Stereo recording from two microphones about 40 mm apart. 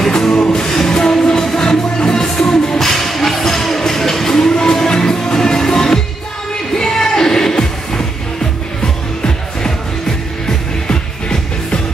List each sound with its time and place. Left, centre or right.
0.0 s music: centre
0.3 s music: left
0.6 s music: centre